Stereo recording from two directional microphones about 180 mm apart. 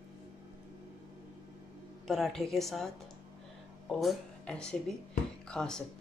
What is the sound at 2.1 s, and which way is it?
A woman's voice, centre (ahead or behind).